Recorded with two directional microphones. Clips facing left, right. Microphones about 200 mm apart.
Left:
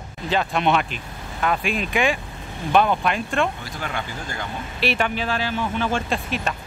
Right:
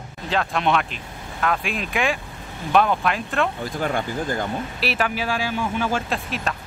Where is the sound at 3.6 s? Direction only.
50° right (ahead or behind).